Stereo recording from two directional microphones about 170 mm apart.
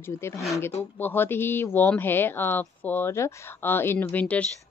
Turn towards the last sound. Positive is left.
turn(degrees=5)  # may be behind; listen again after turning